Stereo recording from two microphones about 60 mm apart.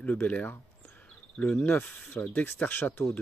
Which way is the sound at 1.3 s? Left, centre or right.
Centre.